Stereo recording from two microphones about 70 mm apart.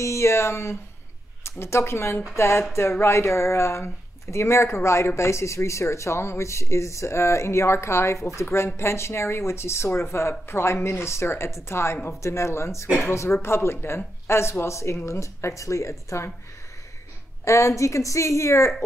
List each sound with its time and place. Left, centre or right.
0.0 s a woman's voice: left
17.5 s a woman's voice: left